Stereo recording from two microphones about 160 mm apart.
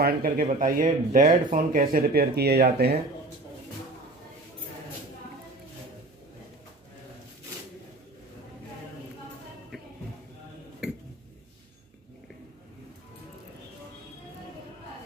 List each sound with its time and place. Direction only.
0.0 s speech: 65° right (ahead or behind)
0.5 s speech: 55° right (ahead or behind); by 3.0 s 80° right